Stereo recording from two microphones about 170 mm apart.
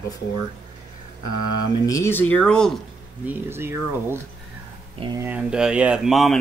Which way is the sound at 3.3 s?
15° right (ahead or behind).